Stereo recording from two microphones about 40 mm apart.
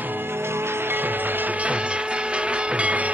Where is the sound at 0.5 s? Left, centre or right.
Right.